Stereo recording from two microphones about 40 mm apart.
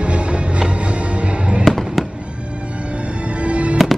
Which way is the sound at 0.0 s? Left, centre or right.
Right.